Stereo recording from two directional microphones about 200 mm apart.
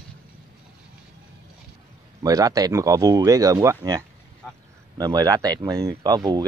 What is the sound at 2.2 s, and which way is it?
Speech, 15° right (ahead or behind).